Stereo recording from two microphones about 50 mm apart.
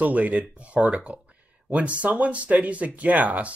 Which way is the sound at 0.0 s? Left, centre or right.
Right.